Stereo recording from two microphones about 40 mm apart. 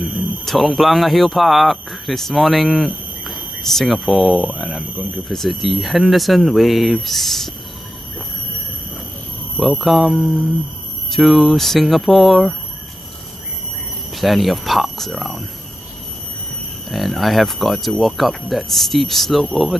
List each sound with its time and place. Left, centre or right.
0.0 s speech: centre
9.6 s speech: centre
14.1 s speech: centre
16.9 s speech: centre